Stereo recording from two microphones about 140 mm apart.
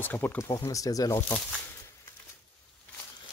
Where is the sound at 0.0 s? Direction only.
10° left (ahead or behind).